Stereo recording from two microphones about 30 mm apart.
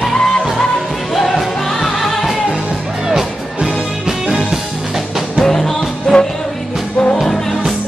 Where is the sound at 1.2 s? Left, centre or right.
Centre.